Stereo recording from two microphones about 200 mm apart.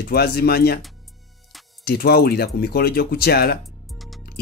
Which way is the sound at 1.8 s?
50° left (ahead or behind).